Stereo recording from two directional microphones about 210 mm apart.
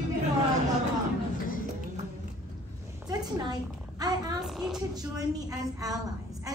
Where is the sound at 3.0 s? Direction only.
20° right (ahead or behind).